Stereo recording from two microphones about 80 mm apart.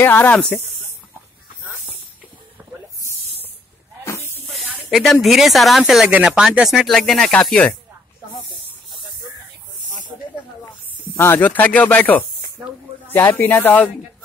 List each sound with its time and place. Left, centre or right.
0.0 s speech: left
4.9 s speech: centre
6.0 s speech: centre
11.1 s speech: left